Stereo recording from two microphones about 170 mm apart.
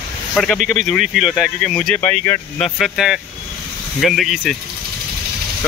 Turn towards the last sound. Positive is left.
turn(degrees=0)  # may be behind; listen again after turning